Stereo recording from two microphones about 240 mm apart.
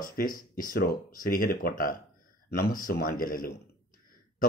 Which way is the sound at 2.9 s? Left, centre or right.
Left.